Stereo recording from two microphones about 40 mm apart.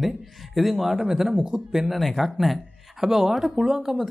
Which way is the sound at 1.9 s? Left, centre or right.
Centre.